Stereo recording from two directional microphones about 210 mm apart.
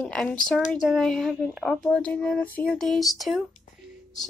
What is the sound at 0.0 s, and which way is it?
Speech, 5° left (ahead or behind).